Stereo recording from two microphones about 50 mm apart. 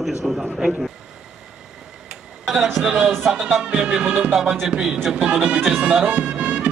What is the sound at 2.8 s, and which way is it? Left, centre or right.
A man's voice, centre.